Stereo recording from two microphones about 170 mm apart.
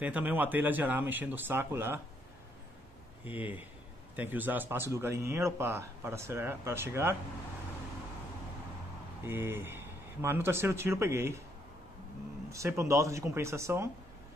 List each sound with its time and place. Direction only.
0.0 s speech: 10° right (ahead or behind)
3.3 s speech: 10° right (ahead or behind)
9.2 s speech: 15° right (ahead or behind)
12.4 s speech: 15° right (ahead or behind)